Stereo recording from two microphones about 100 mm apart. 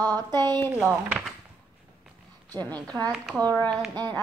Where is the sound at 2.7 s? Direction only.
40° right (ahead or behind).